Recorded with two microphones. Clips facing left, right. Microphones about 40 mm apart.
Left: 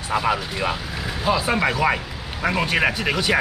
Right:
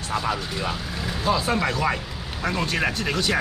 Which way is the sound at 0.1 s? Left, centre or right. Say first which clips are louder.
Left 4 dB; left.